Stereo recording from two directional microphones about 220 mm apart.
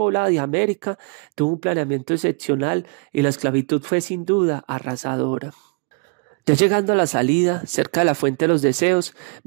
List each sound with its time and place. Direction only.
0.0 s speech: 50° right (ahead or behind)